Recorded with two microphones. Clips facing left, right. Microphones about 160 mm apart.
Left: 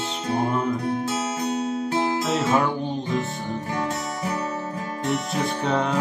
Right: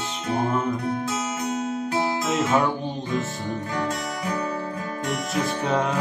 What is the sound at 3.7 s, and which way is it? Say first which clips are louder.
Music: left 1 dB; 25° left (ahead or behind).